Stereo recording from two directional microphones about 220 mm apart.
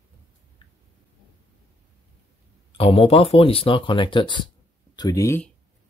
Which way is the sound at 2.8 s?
25° left (ahead or behind).